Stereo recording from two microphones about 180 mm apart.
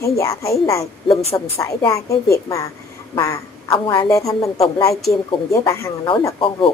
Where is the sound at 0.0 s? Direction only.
15° left (ahead or behind).